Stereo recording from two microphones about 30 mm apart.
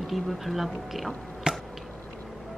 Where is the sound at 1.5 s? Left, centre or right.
Right.